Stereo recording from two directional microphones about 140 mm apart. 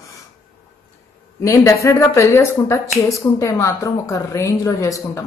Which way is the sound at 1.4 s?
20° left (ahead or behind).